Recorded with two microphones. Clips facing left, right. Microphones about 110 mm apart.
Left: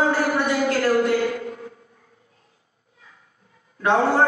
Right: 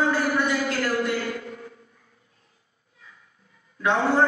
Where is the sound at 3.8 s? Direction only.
45° left (ahead or behind).